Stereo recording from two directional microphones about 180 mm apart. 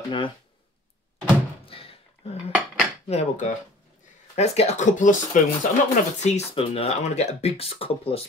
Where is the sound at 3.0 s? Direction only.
35° left (ahead or behind).